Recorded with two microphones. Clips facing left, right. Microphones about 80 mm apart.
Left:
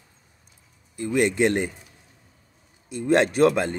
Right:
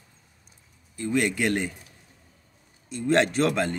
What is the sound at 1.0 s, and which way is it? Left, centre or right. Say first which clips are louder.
Speech: left 4 dB; left.